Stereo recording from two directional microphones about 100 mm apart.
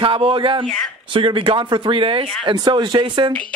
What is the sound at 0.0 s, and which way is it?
Speech, 60° right (ahead or behind).